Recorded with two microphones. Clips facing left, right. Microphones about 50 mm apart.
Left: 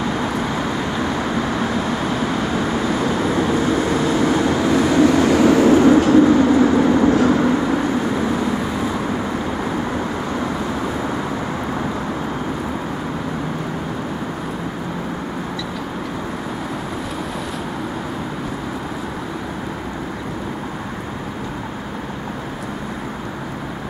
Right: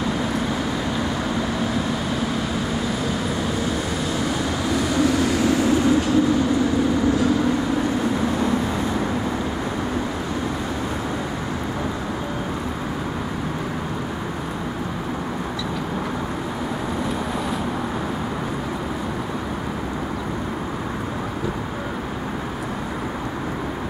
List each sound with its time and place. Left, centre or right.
0.2 s vehicle: centre
3.3 s vehicle: centre